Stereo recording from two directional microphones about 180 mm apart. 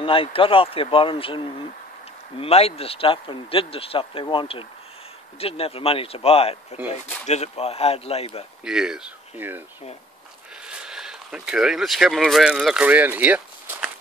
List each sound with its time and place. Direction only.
0.0 s speech: 30° left (ahead or behind)
8.6 s speech: 5° right (ahead or behind)
10.7 s speech: 5° right (ahead or behind)